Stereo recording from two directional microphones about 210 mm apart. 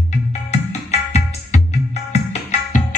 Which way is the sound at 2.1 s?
35° left (ahead or behind).